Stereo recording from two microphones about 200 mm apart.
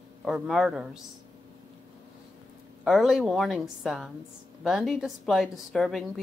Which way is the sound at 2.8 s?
Centre (ahead or behind).